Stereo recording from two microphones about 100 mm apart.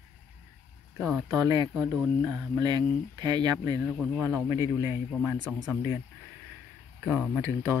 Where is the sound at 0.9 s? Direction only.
5° left (ahead or behind).